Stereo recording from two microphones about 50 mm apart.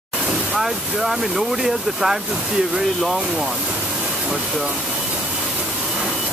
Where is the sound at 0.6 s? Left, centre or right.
Centre.